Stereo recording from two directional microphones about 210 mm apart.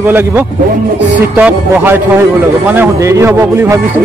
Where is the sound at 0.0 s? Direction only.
10° right (ahead or behind).